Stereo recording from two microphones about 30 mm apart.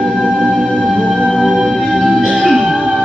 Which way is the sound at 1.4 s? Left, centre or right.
Centre.